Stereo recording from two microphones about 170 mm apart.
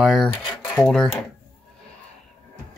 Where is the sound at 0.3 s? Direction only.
30° left (ahead or behind).